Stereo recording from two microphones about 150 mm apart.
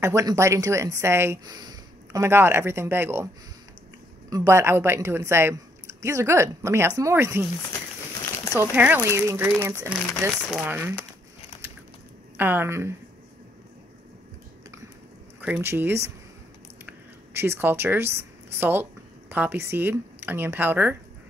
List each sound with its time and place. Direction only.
0.0 s a woman's voice: 20° right (ahead or behind)
2.1 s speech: 15° right (ahead or behind)
4.3 s a woman's voice: 15° right (ahead or behind)
8.5 s speech: 10° right (ahead or behind)
12.4 s speech: 15° right (ahead or behind)
15.4 s speech: 15° right (ahead or behind)